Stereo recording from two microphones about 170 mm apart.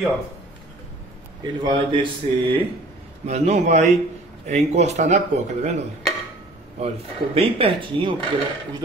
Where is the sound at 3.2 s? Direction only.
40° right (ahead or behind).